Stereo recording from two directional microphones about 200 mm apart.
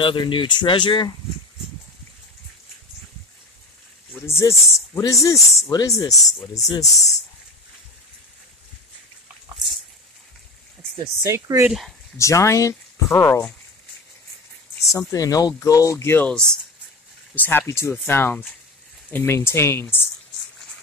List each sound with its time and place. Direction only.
0.0 s speech: 25° left (ahead or behind)
4.1 s speech: 15° left (ahead or behind)
11.0 s speech: 15° right (ahead or behind)
12.2 s speech: 15° left (ahead or behind)
14.9 s speech: 15° left (ahead or behind)